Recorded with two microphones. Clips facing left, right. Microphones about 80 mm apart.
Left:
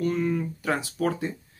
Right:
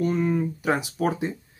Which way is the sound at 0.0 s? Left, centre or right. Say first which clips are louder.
Right 2 dB; right.